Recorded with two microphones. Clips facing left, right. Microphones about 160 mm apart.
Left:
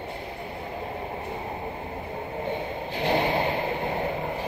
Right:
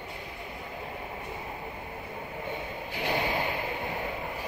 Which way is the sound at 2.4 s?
30° left (ahead or behind).